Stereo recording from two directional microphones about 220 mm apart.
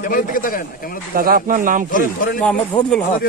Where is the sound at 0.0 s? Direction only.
40° left (ahead or behind).